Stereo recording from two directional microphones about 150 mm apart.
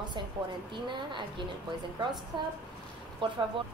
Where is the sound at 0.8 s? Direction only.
30° right (ahead or behind).